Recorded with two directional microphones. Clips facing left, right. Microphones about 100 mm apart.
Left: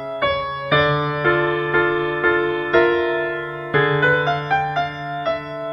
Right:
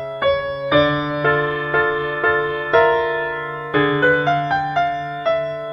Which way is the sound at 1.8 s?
35° right (ahead or behind).